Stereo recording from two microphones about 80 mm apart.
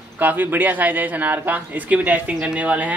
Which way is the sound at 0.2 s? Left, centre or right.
Right.